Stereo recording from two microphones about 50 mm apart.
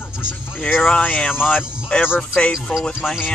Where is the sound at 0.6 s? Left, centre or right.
Left; by 2.9 s centre.